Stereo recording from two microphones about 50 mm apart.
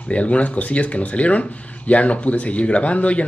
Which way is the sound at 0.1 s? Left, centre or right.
Left.